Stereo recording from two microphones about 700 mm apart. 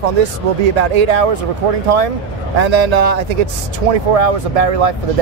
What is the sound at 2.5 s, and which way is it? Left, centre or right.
Speech, right.